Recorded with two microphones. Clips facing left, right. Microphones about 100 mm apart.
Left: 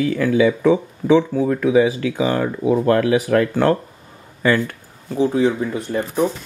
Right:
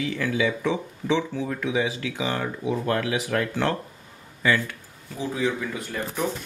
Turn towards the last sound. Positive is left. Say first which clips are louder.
# left 9 dB
turn(degrees=25)  # may be behind; listen again after turning